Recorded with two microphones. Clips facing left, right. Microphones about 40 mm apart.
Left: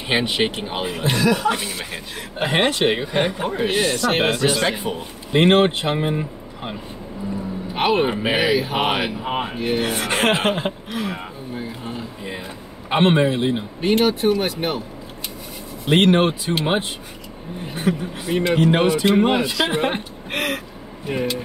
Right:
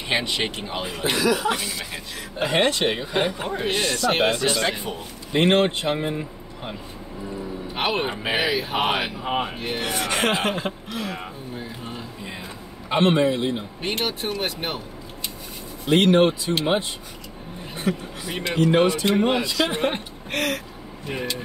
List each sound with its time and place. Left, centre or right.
0.1 s a man's voice: left; by 4.9 s centre
5.3 s a man's voice: left
7.7 s speech: centre
9.9 s speech: left
11.1 s a sound: centre
12.2 s a sound: centre
12.9 s a man's voice: left
13.7 s speech: centre
15.9 s speech: left
17.8 s a man's voice: centre
21.1 s speech: centre